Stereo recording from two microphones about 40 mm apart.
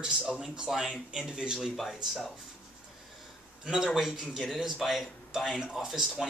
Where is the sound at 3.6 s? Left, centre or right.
Centre.